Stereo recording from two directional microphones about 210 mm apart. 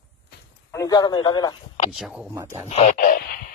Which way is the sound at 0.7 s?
15° left (ahead or behind).